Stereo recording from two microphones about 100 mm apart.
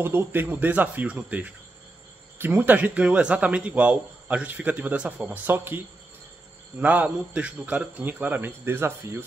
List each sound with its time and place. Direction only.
0.0 s a man's voice: 25° right (ahead or behind)
6.8 s a man's voice: 15° right (ahead or behind)